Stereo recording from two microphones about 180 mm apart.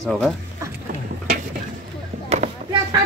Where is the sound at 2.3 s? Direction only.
35° right (ahead or behind).